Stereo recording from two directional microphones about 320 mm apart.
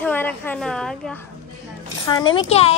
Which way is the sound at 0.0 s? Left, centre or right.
Centre.